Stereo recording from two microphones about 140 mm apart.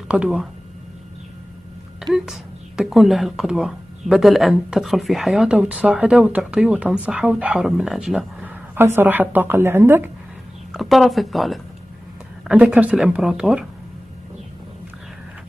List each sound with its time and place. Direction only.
0.1 s a woman's voice: 5° right (ahead or behind)
2.1 s speech: 5° right (ahead or behind)
8.7 s a woman's voice: 15° right (ahead or behind)
10.7 s a woman's voice: centre (ahead or behind)